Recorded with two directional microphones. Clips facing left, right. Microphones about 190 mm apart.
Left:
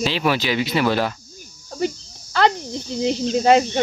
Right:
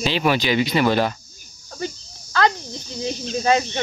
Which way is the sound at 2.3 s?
25° left (ahead or behind).